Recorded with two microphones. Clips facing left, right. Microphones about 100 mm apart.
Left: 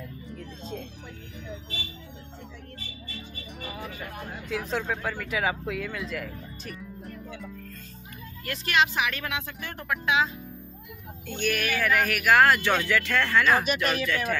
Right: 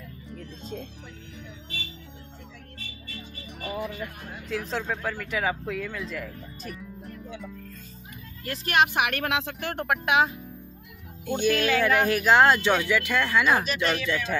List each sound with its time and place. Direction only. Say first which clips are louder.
0.3 s music: right 1 dB; centre (ahead or behind)
4.5 s speech: even; centre (ahead or behind)
8.5 s a woman's voice: right 2 dB; 45° right (ahead or behind)
11.2 s speech: right 5 dB; 15° right (ahead or behind)